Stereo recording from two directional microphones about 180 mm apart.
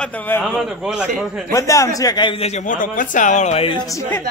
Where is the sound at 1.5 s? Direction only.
15° left (ahead or behind).